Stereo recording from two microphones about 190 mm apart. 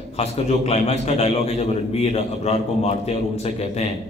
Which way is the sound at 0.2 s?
35° left (ahead or behind).